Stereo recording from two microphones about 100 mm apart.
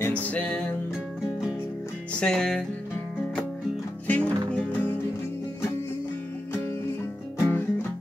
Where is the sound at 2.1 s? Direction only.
5° left (ahead or behind).